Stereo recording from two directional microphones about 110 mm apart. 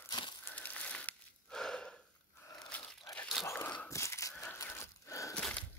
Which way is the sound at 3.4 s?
25° left (ahead or behind).